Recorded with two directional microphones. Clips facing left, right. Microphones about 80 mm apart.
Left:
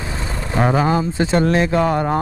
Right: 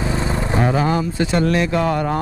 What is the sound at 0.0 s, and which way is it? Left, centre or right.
Vehicle, right.